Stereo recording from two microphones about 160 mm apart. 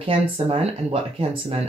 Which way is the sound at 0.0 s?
35° right (ahead or behind).